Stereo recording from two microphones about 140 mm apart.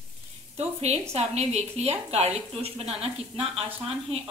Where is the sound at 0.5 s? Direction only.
50° right (ahead or behind).